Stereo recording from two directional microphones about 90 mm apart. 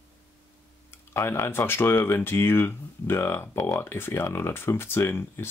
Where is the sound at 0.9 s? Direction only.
25° left (ahead or behind).